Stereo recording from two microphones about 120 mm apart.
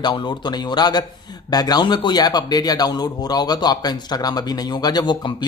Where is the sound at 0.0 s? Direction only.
40° left (ahead or behind).